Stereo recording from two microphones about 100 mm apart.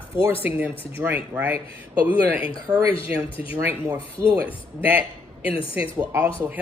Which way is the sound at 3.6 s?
25° right (ahead or behind).